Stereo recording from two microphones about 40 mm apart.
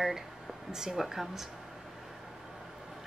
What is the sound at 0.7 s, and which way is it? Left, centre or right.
Speech, centre.